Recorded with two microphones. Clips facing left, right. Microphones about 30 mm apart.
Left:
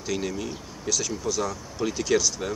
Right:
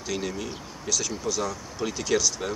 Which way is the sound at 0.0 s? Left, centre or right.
Centre.